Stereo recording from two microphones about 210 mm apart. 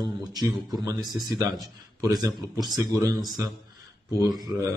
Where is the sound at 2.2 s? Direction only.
20° right (ahead or behind).